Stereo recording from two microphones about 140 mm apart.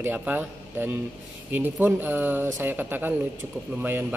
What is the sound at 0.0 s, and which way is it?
A man's voice, 15° right (ahead or behind).